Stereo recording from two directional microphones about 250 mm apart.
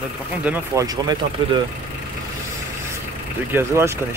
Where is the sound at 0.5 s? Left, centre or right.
Centre.